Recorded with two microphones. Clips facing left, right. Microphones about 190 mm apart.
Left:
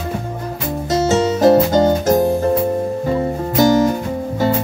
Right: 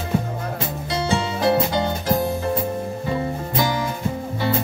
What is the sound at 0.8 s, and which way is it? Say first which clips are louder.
Music: left 9 dB; 45° left (ahead or behind).